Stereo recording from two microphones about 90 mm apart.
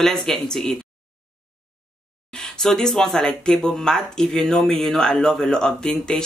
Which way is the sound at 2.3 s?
5° left (ahead or behind).